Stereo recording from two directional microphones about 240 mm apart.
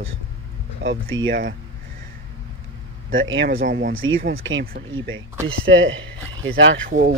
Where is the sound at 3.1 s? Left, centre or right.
Right.